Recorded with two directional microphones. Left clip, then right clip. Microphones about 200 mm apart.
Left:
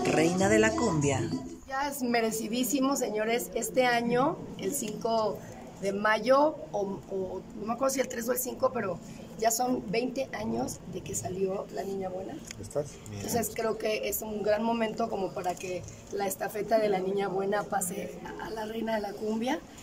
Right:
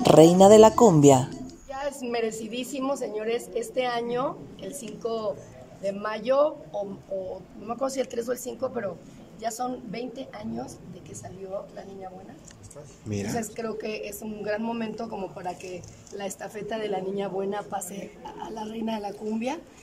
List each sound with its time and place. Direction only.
0.0 s speech: 25° right (ahead or behind)
1.7 s a woman's voice: centre (ahead or behind)
7.8 s a woman's voice: 5° right (ahead or behind)
12.7 s speech: 40° left (ahead or behind)
13.3 s a woman's voice: centre (ahead or behind)